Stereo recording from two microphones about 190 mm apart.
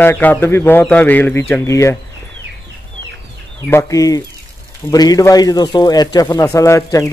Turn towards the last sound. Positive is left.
turn(degrees=15)  # may be behind; listen again after turning